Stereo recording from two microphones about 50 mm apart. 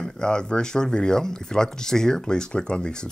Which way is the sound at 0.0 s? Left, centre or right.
Centre.